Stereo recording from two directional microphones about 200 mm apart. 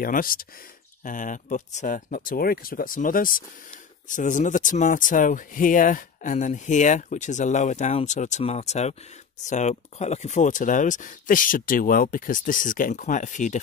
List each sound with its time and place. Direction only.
0.0 s speech: 45° left (ahead or behind)